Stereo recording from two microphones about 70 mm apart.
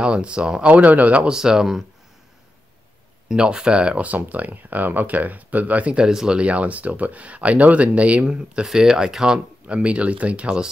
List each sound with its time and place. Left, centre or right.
0.0 s speech: centre
3.3 s speech: centre